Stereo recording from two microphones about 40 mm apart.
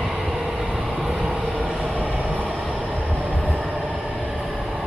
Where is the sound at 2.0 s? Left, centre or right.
Right.